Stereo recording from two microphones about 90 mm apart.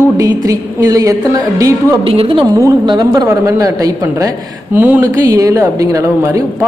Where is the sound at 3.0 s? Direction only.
40° right (ahead or behind).